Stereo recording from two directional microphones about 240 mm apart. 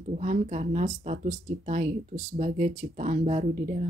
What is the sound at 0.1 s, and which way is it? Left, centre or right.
A woman's voice, right.